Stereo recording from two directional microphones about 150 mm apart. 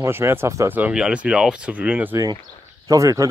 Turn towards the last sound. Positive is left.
turn(degrees=-20)  # may be behind; listen again after turning